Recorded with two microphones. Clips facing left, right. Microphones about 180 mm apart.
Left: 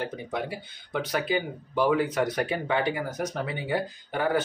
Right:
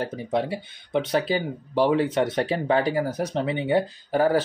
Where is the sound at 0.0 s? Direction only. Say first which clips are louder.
Right 6 dB; 30° right (ahead or behind).